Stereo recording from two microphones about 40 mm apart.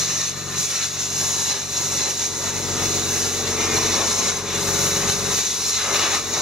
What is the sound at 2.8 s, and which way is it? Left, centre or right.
Vehicle, centre.